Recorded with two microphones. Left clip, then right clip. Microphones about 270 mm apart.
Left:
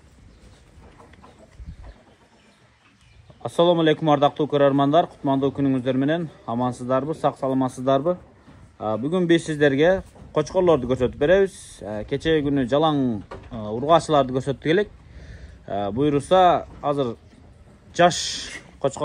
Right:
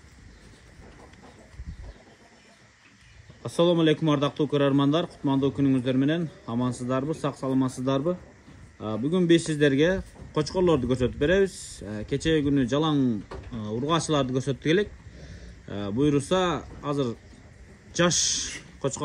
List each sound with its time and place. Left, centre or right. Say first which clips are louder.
3.4 s a man's voice: left 4 dB; centre